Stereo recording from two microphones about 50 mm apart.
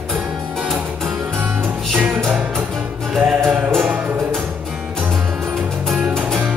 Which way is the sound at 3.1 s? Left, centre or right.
Centre.